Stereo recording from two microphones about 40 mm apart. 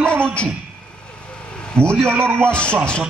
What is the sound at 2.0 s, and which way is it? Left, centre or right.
Speech, right.